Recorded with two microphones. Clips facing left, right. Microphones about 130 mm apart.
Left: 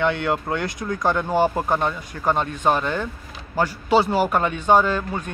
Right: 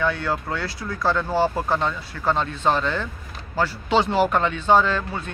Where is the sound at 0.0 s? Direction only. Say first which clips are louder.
Left 2 dB; 20° left (ahead or behind).